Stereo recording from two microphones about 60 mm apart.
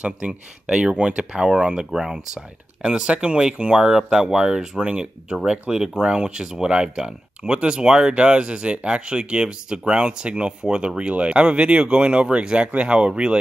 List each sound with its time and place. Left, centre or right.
0.0 s speech: centre